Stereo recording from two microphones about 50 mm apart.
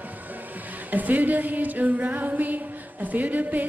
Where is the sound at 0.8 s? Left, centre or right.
Right.